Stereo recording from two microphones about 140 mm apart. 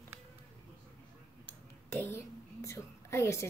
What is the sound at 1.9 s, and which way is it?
Whispering, 20° left (ahead or behind).